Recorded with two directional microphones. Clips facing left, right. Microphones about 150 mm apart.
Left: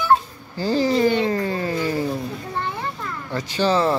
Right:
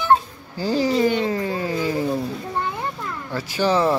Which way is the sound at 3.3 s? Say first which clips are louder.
Even; 10° right (ahead or behind).